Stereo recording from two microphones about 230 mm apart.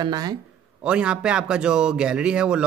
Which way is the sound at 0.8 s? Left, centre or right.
Centre.